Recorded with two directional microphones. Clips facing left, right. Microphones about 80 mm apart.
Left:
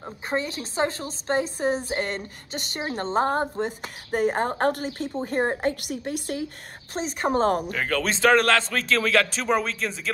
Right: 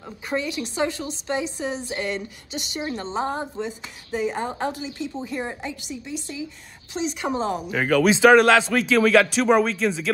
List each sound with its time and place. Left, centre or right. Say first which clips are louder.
0.3 s a woman's voice: right 2 dB; left
6.9 s a woman's voice: left 1 dB; left
7.7 s a man's voice: right 7 dB; centre